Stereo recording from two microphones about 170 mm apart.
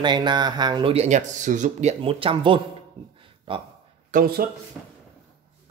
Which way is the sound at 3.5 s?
30° right (ahead or behind).